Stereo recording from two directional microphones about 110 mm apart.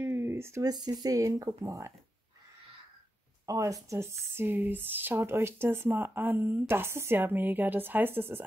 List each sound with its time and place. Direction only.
0.0 s a sound: 20° right (ahead or behind)
0.7 s speech: 40° right (ahead or behind)
3.4 s speech: 30° right (ahead or behind)